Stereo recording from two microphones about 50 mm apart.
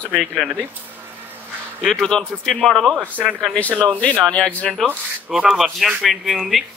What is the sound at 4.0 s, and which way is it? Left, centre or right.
Speech, left.